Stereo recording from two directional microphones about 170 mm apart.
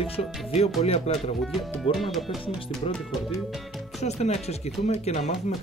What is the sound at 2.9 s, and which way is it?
Speech, 35° left (ahead or behind).